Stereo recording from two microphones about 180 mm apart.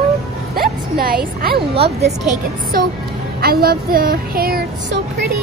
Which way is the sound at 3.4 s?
55° right (ahead or behind).